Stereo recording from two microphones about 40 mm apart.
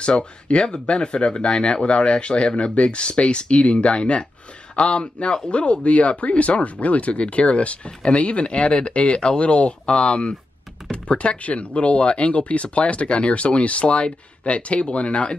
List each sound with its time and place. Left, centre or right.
0.0 s speech: left